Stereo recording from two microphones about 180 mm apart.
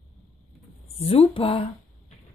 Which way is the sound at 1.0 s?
30° left (ahead or behind).